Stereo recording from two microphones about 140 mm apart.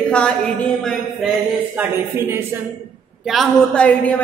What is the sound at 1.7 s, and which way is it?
Speech, 15° right (ahead or behind).